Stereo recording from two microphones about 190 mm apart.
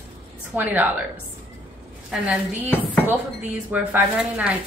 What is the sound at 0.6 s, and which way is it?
Speech, 10° right (ahead or behind).